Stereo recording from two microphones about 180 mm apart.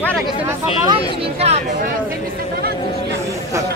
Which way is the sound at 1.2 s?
35° right (ahead or behind).